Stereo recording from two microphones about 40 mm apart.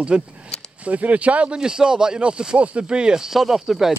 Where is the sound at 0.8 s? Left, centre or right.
Right.